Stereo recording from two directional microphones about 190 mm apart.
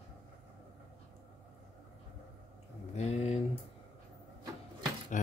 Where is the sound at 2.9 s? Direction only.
35° left (ahead or behind).